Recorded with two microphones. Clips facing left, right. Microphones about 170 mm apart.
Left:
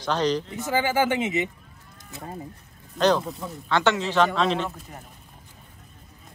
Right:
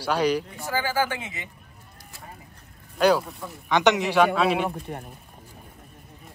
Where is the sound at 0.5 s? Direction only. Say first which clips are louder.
Left 4 dB; 20° left (ahead or behind).